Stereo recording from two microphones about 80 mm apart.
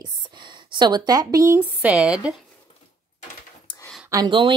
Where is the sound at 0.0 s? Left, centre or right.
Right.